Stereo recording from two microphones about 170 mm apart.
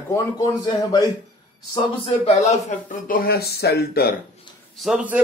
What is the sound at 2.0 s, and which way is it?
Speech, 40° left (ahead or behind).